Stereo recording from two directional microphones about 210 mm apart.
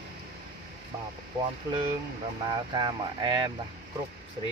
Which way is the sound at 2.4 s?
20° right (ahead or behind).